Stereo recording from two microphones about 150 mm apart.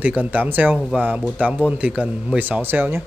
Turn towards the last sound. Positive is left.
turn(degrees=-15)  # may be behind; listen again after turning